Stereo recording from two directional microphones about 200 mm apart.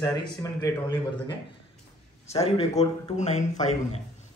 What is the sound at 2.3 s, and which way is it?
Speech, 30° left (ahead or behind).